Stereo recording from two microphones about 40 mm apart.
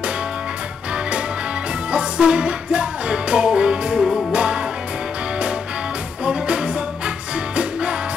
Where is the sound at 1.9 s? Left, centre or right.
Right.